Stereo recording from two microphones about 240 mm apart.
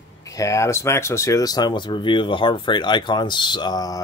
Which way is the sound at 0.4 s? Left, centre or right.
Centre.